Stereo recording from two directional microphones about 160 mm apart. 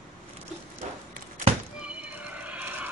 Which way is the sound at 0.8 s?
45° right (ahead or behind).